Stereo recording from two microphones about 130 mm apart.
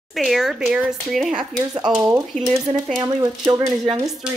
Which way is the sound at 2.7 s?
30° right (ahead or behind).